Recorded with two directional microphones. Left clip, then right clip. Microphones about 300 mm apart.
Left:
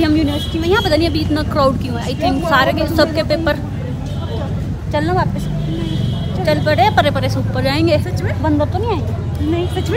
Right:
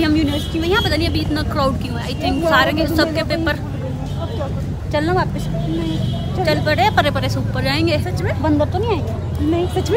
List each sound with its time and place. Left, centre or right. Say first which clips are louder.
0.0 s a woman's voice: left 2 dB; centre
4.9 s speech: left 1 dB; centre
6.4 s speech: left 2 dB; centre
9.5 s speech: right 1 dB; right